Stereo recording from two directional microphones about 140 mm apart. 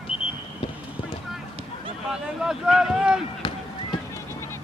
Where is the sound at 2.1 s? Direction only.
5° right (ahead or behind).